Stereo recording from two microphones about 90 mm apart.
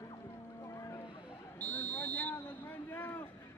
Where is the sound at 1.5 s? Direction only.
15° left (ahead or behind).